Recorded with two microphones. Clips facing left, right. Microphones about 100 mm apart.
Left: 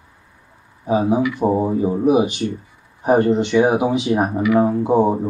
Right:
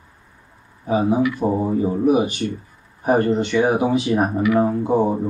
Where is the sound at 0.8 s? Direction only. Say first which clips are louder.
Left 1 dB; 15° left (ahead or behind).